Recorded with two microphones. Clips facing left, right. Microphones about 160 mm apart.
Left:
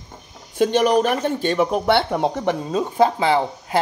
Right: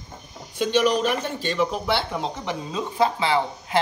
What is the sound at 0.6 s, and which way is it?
Speech, 50° left (ahead or behind).